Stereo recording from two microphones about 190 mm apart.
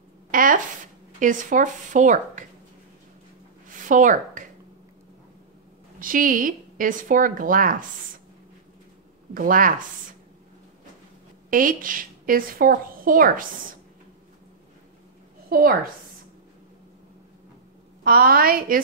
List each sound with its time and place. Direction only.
0.3 s zipper: 45° right (ahead or behind)
1.2 s a woman's voice: 45° right (ahead or behind)
3.8 s speech: 45° right (ahead or behind)
5.9 s a woman's voice: 45° right (ahead or behind)
9.3 s a woman's voice: 45° right (ahead or behind)
11.5 s a woman's voice: 45° right (ahead or behind)
18.0 s a woman's voice: 50° right (ahead or behind)